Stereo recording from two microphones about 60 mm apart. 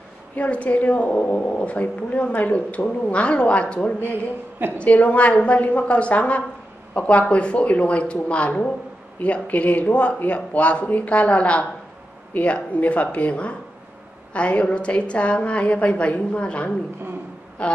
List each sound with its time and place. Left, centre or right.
0.4 s speech: left